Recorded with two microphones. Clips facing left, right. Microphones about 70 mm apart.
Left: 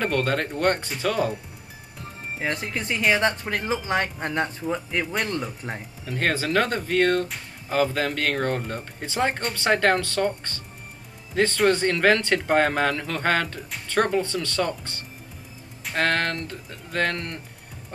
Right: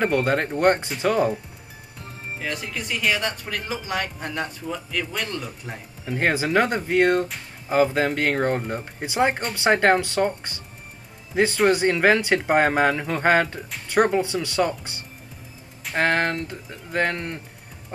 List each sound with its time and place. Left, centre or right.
0.0 s speech: centre
2.3 s speech: left
6.0 s speech: centre